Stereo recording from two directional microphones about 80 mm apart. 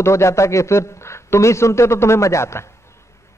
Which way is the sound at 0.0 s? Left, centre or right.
Left.